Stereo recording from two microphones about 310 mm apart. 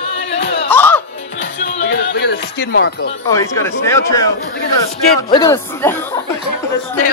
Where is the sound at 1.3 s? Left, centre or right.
Left.